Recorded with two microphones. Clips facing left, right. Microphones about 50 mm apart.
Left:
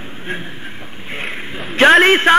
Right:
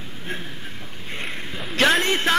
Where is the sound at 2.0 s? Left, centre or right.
Left.